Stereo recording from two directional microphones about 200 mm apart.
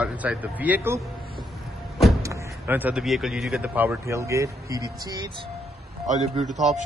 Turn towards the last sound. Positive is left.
turn(degrees=-35)  # may be behind; listen again after turning